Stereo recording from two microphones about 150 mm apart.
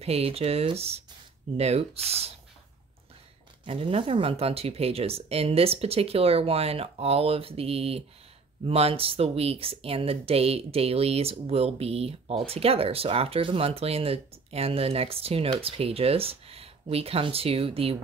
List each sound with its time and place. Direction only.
0.0 s speech: 40° right (ahead or behind)
3.6 s speech: 40° right (ahead or behind)